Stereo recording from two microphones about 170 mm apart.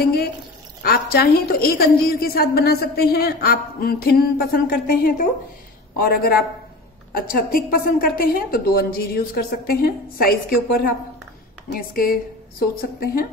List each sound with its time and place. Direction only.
0.8 s a woman's voice: 65° left (ahead or behind)